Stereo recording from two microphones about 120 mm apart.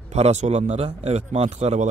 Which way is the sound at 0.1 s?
65° right (ahead or behind).